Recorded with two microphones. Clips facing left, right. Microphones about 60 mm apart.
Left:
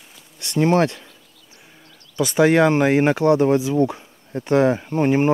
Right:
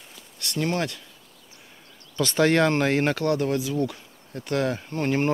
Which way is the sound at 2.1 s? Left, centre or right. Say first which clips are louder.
Left 5 dB; centre.